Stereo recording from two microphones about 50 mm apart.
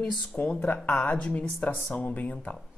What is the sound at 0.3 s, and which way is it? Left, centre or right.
Speech, left.